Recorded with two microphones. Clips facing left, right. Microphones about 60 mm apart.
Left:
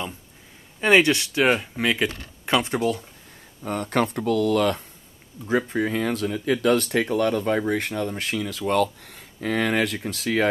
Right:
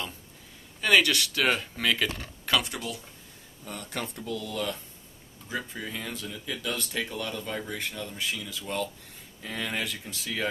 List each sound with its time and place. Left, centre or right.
0.7 s speech: left
3.6 s speech: left